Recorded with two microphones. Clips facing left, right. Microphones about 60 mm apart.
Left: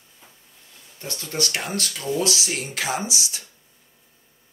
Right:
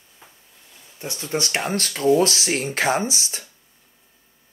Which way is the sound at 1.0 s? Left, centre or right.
Right.